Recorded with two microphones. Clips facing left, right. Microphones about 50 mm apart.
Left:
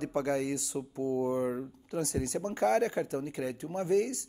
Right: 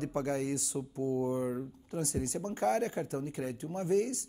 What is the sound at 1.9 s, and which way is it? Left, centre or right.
A man's voice, left.